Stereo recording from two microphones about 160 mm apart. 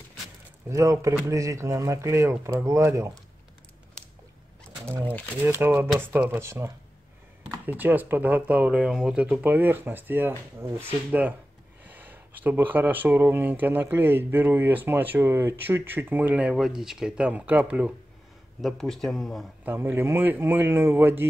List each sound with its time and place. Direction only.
0.7 s a man's voice: 20° right (ahead or behind)
5.4 s speech: 15° right (ahead or behind); by 19.4 s centre (ahead or behind)
19.6 s speech: 10° right (ahead or behind)